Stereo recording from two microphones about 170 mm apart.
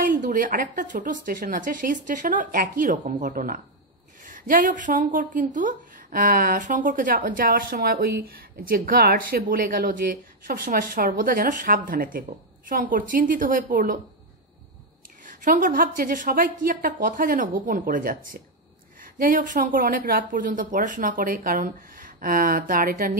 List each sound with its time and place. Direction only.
0.0 s speech: 50° right (ahead or behind)
15.2 s speech: 50° right (ahead or behind)